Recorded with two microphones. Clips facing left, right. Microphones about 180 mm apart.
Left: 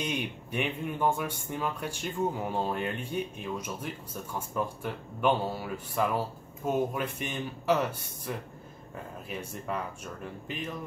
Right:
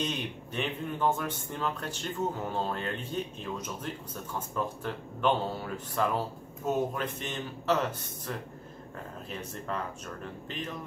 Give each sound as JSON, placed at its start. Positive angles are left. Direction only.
{"t": 0.0, "sound": "speech", "side_deg": 10}